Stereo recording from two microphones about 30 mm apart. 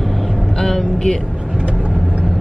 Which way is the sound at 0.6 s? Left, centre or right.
Centre.